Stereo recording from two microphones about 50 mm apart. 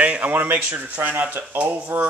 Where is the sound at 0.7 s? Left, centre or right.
Right.